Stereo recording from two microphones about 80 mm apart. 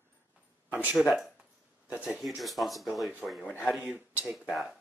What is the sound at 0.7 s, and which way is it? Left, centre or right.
A woman's voice, centre.